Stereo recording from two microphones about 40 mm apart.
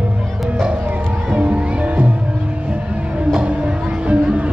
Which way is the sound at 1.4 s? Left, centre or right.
Right.